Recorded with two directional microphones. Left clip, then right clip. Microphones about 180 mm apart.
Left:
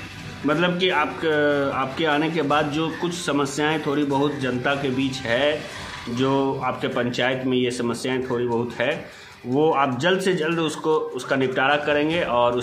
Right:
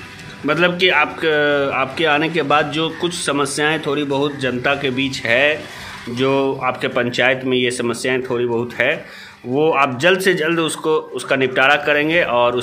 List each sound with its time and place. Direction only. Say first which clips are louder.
0.5 s a man's voice: right 6 dB; 15° right (ahead or behind)